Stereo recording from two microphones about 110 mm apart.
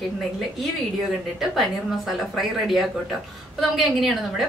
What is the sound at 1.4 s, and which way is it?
A woman's voice, centre (ahead or behind).